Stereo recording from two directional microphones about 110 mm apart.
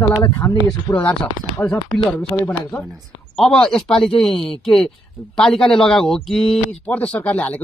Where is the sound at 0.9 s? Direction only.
15° left (ahead or behind).